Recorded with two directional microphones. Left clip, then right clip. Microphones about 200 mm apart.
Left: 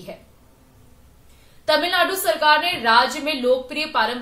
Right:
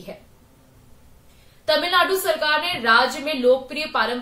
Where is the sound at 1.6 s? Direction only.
Centre (ahead or behind).